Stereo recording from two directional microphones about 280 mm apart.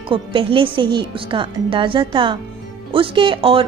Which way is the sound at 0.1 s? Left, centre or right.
Centre.